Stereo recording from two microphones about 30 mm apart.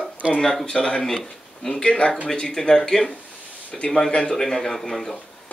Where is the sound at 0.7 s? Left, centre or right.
Left.